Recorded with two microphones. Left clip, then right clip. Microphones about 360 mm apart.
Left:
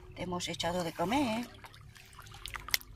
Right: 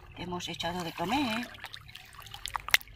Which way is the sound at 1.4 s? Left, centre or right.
Right.